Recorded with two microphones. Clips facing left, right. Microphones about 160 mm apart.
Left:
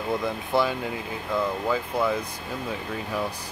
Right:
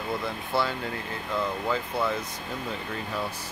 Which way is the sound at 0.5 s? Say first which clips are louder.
Left 4 dB; 15° left (ahead or behind).